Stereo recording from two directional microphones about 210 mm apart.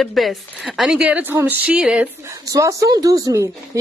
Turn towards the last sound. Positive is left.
turn(degrees=-15)  # may be behind; listen again after turning